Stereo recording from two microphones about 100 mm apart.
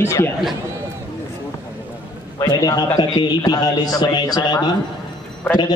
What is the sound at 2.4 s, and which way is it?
A man's voice, 40° left (ahead or behind).